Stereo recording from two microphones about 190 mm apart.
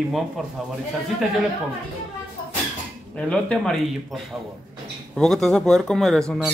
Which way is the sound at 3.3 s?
5° left (ahead or behind).